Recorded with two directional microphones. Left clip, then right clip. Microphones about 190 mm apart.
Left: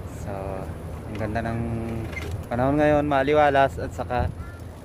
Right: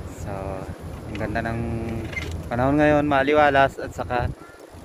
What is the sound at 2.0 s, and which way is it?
Speech, 60° left (ahead or behind).